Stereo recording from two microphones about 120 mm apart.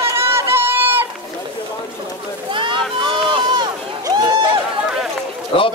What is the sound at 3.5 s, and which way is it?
Run, 40° right (ahead or behind).